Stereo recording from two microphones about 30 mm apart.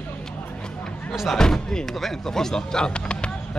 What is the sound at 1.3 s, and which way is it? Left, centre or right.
Speech, centre.